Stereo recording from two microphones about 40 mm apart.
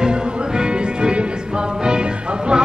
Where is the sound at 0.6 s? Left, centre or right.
Right.